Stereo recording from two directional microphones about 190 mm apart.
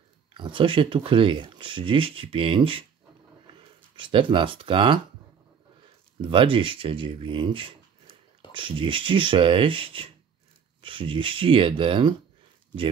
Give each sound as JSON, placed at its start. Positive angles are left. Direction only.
{"t": 0.3, "sound": "speech", "side_deg": -25}
{"t": 6.2, "sound": "speech", "side_deg": -25}